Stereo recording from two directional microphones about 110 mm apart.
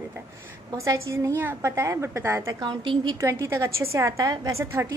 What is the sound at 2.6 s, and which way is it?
Speech, 50° right (ahead or behind).